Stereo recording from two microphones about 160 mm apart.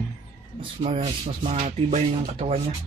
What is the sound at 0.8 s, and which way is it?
Speech, 40° right (ahead or behind).